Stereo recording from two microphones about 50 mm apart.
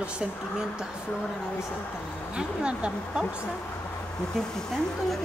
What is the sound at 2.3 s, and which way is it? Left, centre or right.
Speech, centre.